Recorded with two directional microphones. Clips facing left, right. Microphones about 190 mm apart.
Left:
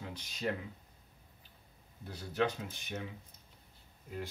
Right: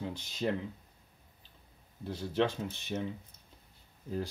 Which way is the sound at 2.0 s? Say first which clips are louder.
Right 3 dB; 25° right (ahead or behind).